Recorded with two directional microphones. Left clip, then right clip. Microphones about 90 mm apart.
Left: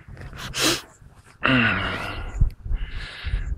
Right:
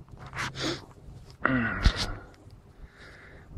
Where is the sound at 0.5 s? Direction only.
30° left (ahead or behind).